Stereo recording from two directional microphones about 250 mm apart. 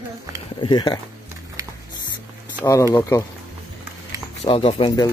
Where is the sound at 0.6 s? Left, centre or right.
Centre.